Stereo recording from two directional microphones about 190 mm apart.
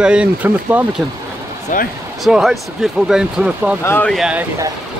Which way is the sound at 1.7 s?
45° left (ahead or behind).